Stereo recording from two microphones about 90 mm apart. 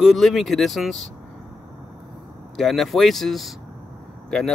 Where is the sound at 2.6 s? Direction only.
Centre (ahead or behind).